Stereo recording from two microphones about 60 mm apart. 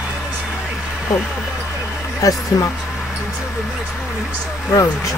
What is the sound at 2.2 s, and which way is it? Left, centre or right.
Speech, left.